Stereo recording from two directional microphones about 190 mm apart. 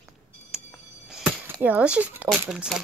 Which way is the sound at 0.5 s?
5° right (ahead or behind).